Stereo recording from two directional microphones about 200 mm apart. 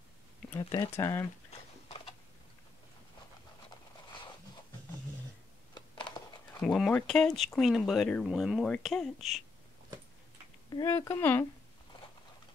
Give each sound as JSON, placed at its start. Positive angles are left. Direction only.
{"t": 0.5, "sound": "speech", "side_deg": 15}
{"t": 1.9, "sound": "typing", "side_deg": 30}
{"t": 5.8, "sound": "a sound", "side_deg": 25}
{"t": 6.6, "sound": "speech", "side_deg": 5}
{"t": 10.7, "sound": "speech", "side_deg": 15}